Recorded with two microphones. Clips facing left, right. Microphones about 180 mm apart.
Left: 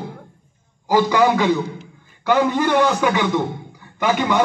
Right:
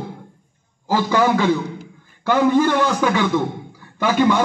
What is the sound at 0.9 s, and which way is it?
A man's voice, 15° left (ahead or behind).